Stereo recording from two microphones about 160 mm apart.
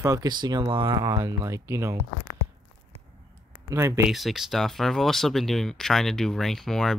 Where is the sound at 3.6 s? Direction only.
20° right (ahead or behind).